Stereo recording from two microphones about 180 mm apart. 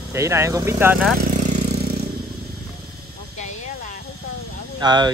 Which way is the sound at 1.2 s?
45° right (ahead or behind).